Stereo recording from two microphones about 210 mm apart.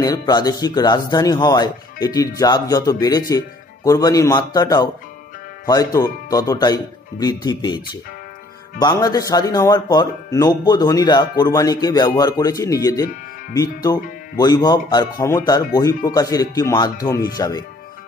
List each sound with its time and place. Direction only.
0.0 s speech: 20° left (ahead or behind)
14.4 s speech: 20° left (ahead or behind)